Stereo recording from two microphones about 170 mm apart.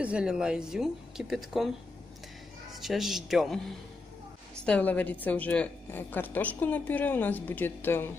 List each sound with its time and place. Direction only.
0.0 s speech: 5° right (ahead or behind)
2.7 s a woman's voice: centre (ahead or behind)